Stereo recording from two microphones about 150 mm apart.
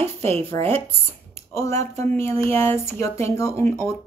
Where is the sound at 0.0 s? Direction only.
15° left (ahead or behind).